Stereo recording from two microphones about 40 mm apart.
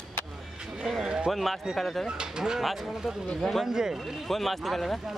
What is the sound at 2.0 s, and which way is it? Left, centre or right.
Speech, centre.